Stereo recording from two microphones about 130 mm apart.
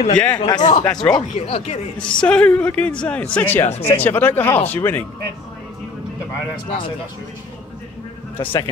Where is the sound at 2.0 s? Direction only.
10° left (ahead or behind).